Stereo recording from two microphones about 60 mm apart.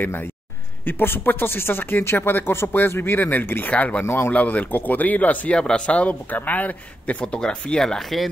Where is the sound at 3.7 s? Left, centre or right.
Left.